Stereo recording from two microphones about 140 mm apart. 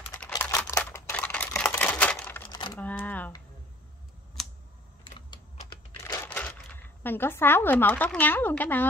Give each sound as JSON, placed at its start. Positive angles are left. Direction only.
{"t": 0.4, "sound": "camera", "side_deg": 20}
{"t": 1.8, "sound": "a sound", "side_deg": 10}
{"t": 2.5, "sound": "a sound", "side_deg": 30}
{"t": 2.8, "sound": "camera", "side_deg": 10}
{"t": 5.3, "sound": "typing", "side_deg": 30}
{"t": 6.0, "sound": "speech", "side_deg": 15}